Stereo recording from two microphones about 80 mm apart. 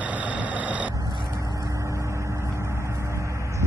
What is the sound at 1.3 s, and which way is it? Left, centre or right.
Vehicle, right.